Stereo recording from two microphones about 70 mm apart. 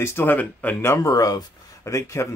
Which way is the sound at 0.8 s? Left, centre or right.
Left.